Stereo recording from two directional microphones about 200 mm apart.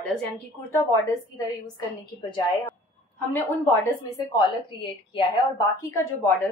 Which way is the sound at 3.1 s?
10° left (ahead or behind).